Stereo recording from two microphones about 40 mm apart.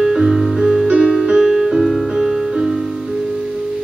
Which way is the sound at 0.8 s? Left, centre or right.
Right.